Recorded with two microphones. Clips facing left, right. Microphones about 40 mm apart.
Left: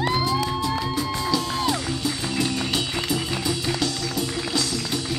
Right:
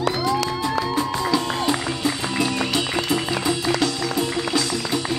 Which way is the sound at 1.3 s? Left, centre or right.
Right.